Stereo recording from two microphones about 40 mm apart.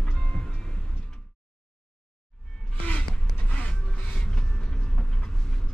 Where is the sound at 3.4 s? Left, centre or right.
Left.